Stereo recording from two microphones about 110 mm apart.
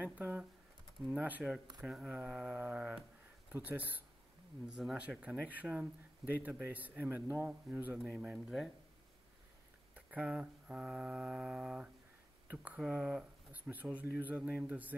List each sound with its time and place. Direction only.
0.0 s speech: 15° right (ahead or behind)
9.9 s speech: 10° right (ahead or behind)